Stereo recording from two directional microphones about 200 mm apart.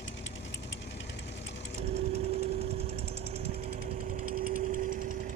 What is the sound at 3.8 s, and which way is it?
Light engine, 45° right (ahead or behind).